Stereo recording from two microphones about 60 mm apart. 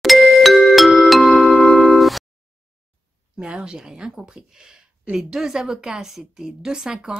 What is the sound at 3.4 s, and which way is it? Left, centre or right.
Speech, centre.